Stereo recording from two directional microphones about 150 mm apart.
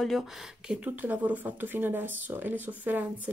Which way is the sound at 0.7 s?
10° right (ahead or behind).